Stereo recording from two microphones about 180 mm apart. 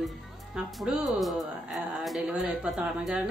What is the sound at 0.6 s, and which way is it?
Speech, centre (ahead or behind).